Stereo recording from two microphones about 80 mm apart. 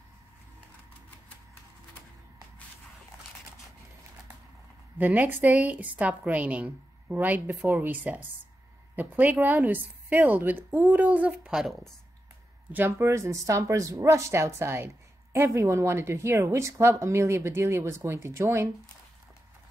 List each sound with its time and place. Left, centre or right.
4.9 s a woman's voice: centre
12.7 s speech: right